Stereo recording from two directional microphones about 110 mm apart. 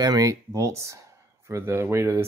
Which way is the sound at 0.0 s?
35° right (ahead or behind).